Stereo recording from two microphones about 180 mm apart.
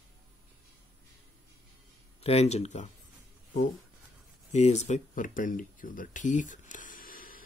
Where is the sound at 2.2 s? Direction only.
35° left (ahead or behind).